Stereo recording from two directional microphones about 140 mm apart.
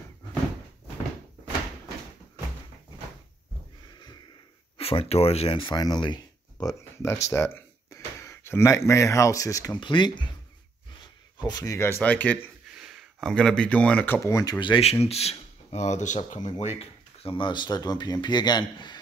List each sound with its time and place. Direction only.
4.7 s speech: 45° left (ahead or behind)
11.3 s speech: 30° left (ahead or behind); by 12.4 s 10° left (ahead or behind)
12.7 s speech: centre (ahead or behind); by 14.8 s 30° left (ahead or behind)
14.8 s speech: 50° left (ahead or behind); by 18.9 s 30° left (ahead or behind)